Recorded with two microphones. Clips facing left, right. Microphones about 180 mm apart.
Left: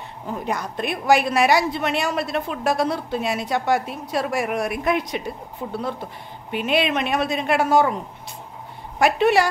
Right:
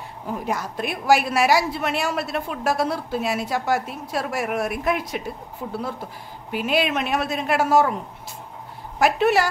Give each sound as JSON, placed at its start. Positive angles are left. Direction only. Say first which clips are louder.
{"t": 0.3, "sound": "a woman's voice", "louder": "even", "side_deg": -5}
{"t": 9.0, "sound": "a woman's voice", "louder": "left 1 dB", "side_deg": 0}